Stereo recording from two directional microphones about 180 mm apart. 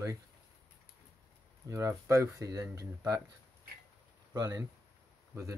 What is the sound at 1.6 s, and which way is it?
Speech, 15° right (ahead or behind).